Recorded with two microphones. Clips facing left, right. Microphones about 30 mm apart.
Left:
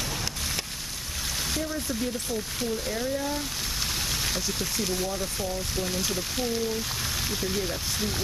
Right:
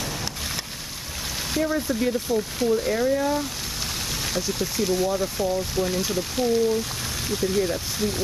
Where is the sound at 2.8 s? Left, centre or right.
Centre.